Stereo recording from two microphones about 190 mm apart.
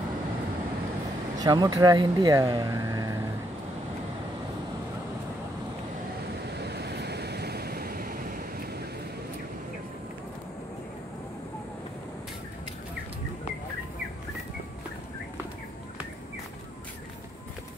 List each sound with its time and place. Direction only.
1.4 s speech: 20° right (ahead or behind)
6.5 s waves: 60° right (ahead or behind)